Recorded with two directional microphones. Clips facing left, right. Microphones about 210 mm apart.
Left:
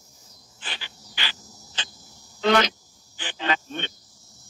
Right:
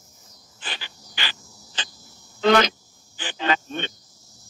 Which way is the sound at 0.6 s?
50° right (ahead or behind).